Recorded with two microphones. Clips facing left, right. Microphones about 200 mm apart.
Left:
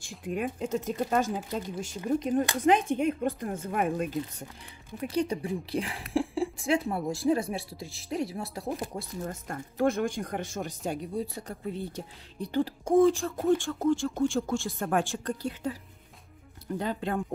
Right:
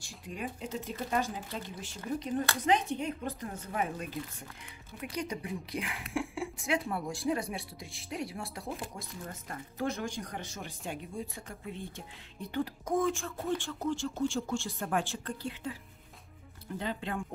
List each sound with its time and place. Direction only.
0.0 s speech: 55° left (ahead or behind)
5.0 s a woman's voice: 30° left (ahead or behind)
8.6 s speech: 40° left (ahead or behind)